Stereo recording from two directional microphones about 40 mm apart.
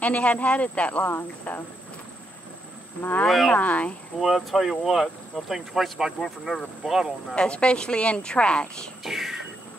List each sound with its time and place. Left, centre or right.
0.0 s speech: left
3.0 s speech: left
3.3 s speech: centre
3.5 s speech: left
4.2 s speech: centre
7.3 s speech: left
9.0 s speech: centre